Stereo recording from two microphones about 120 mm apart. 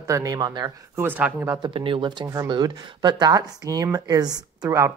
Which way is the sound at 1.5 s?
40° right (ahead or behind).